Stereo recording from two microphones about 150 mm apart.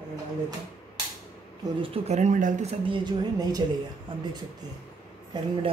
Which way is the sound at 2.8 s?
30° right (ahead or behind).